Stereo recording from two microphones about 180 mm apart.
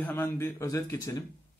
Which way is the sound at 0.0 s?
10° left (ahead or behind).